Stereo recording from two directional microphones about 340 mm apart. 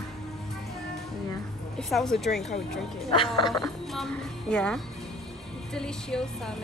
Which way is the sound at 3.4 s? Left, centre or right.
Centre.